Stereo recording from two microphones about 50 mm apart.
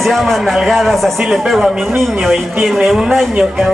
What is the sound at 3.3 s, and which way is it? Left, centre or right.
Speech, centre.